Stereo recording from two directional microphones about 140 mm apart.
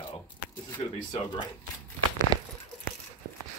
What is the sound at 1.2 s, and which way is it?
Speech, 35° left (ahead or behind).